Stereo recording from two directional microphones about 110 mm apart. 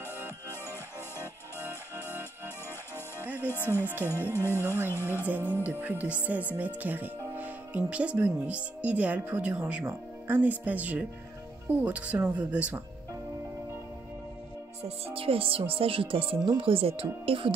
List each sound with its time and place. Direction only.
2.0 s music: 20° left (ahead or behind)
3.3 s speech: 20° left (ahead or behind)
3.8 s speech: 15° right (ahead or behind)
4.1 s music: 20° left (ahead or behind)
5.2 s speech: 15° right (ahead or behind)
14.8 s speech: 65° right (ahead or behind)